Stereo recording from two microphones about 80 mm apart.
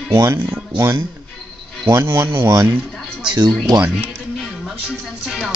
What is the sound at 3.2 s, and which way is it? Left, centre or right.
Speech, right.